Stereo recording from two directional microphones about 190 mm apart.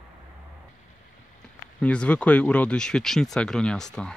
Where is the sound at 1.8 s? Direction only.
5° left (ahead or behind).